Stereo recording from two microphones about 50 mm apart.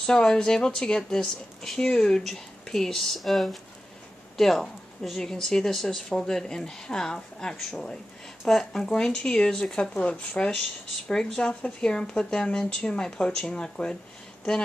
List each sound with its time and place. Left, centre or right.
0.0 s speech: centre
11.1 s speech: centre